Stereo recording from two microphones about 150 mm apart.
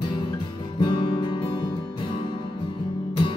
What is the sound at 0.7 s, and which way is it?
Music, 30° left (ahead or behind).